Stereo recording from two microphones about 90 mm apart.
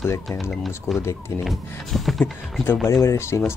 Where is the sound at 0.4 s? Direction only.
Centre (ahead or behind).